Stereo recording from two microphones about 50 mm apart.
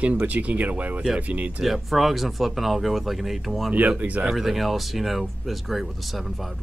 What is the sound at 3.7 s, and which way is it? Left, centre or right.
Speech, right.